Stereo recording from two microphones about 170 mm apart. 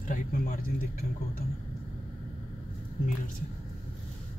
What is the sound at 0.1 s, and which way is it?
Speech, 55° left (ahead or behind).